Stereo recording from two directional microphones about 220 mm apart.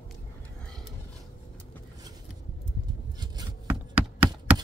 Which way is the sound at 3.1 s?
20° right (ahead or behind).